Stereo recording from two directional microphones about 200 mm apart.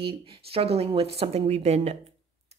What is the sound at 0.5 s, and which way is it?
A woman's voice, 30° right (ahead or behind).